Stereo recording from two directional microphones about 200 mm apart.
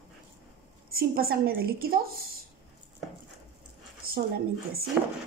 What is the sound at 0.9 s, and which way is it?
A woman's voice, 50° right (ahead or behind).